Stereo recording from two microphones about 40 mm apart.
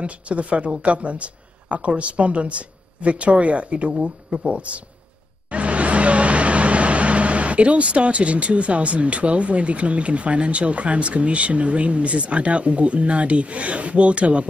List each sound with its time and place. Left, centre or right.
0.0 s speech: right